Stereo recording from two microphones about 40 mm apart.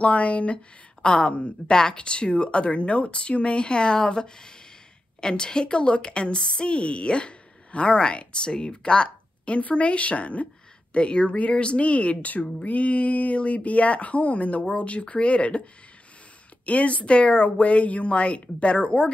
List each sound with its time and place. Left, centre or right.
0.0 s a woman's voice: left
16.6 s speech: left